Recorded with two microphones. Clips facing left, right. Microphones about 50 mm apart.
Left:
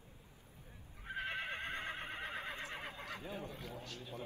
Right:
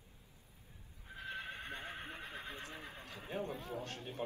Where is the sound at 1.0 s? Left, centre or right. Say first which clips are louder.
Left 4 dB; left.